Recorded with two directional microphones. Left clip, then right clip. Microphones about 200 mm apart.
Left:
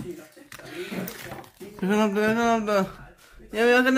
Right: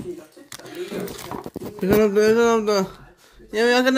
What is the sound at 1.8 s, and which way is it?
Speech, 5° left (ahead or behind).